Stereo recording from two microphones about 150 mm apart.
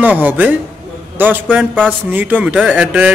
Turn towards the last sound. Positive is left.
turn(degrees=-10)  # may be behind; listen again after turning